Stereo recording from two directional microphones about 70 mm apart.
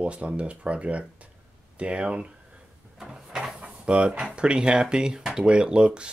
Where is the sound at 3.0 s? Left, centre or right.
Centre.